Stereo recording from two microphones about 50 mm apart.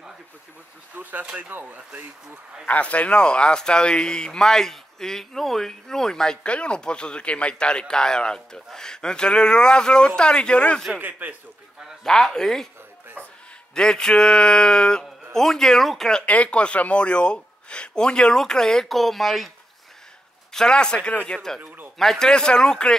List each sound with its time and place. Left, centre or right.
1.2 s speech: right
1.5 s speech: right
2.7 s speech: left; by 6.3 s centre
6.4 s speech: left
11.0 s a man's voice: right
12.0 s speech: centre
13.7 s speech: centre
16.3 s speech: left; by 19.5 s centre
20.5 s speech: centre
21.3 s a man's voice: centre
22.3 s speech: centre